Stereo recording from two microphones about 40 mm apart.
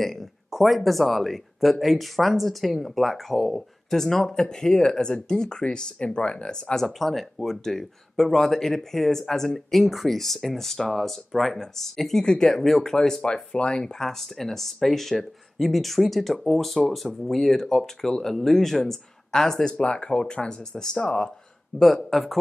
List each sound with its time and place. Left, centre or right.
0.0 s a sound: centre
0.6 s speech: centre; by 6.6 s left
6.7 s speech: centre
13.9 s speech: centre
21.7 s speech: centre